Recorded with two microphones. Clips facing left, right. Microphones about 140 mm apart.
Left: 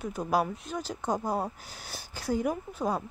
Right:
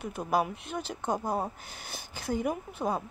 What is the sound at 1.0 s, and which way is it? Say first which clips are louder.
Speech: left 1 dB; 5° right (ahead or behind).